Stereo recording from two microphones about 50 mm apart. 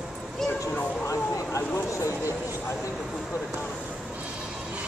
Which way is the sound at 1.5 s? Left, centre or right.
Left.